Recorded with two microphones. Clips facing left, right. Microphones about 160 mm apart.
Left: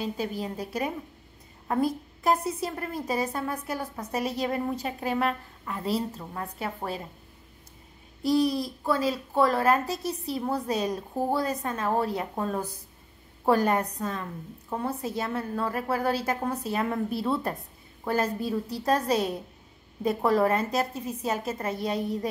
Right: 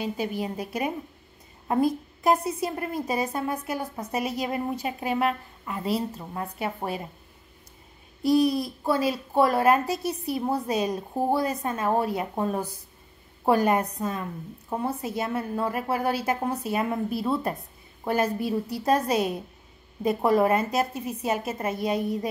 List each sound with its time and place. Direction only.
0.4 s a woman's voice: 15° right (ahead or behind)
8.2 s a woman's voice: 15° right (ahead or behind)